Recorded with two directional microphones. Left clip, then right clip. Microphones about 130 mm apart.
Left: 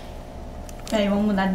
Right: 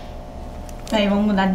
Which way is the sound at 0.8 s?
5° right (ahead or behind).